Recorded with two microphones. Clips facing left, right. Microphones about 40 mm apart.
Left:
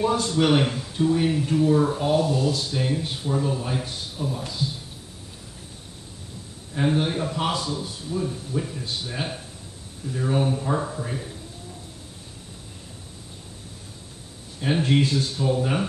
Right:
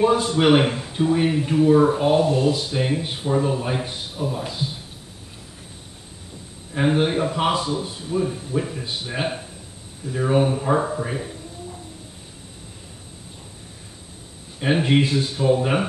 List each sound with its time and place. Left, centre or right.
0.0 s speech: right
6.7 s speech: right
14.6 s speech: right